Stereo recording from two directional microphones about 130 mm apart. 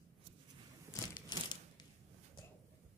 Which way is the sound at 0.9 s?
25° left (ahead or behind).